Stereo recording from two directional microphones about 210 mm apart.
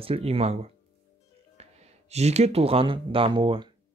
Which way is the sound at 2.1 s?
30° right (ahead or behind).